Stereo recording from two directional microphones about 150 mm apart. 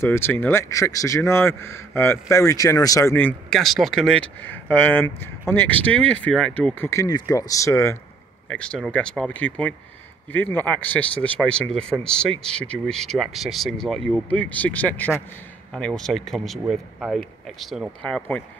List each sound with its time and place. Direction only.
0.0 s speech: 15° left (ahead or behind)
3.2 s speech: 5° left (ahead or behind)
8.5 s speech: 5° left (ahead or behind)